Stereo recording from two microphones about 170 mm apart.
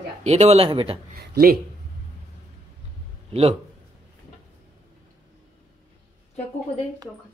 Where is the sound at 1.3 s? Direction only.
60° right (ahead or behind).